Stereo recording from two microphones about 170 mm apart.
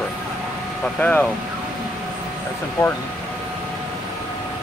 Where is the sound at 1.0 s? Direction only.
10° left (ahead or behind).